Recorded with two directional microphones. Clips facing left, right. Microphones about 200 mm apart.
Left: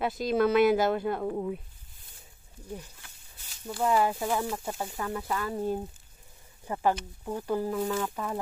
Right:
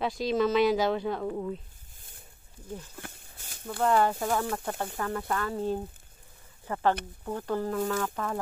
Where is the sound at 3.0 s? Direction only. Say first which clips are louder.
Right 11 dB; 55° right (ahead or behind).